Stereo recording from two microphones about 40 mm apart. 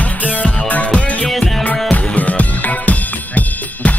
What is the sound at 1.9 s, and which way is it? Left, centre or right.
Drum kit, left.